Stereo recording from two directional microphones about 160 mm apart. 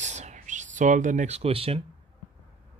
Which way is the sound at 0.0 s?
50° right (ahead or behind).